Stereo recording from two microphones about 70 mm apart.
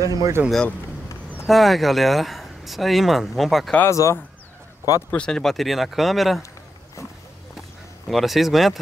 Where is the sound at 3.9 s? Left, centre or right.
Left.